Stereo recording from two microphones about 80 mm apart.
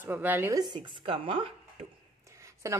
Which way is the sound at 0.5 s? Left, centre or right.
Right.